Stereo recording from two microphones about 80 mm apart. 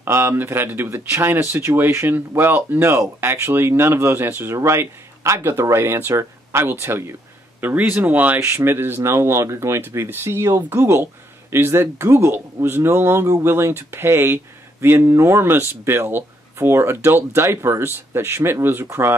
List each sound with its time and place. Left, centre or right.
0.0 s speech: right